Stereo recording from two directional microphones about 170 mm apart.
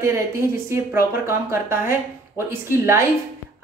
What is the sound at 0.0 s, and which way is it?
Speech, 15° right (ahead or behind).